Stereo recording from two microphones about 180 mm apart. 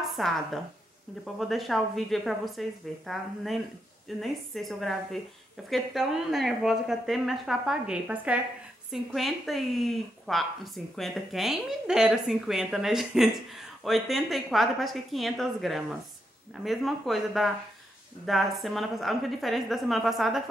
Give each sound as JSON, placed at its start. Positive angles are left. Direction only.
{"t": 0.1, "sound": "speech", "side_deg": 0}
{"t": 4.2, "sound": "speech", "side_deg": 0}